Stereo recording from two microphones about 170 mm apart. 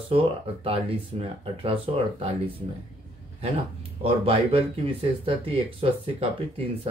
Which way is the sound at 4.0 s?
35° right (ahead or behind).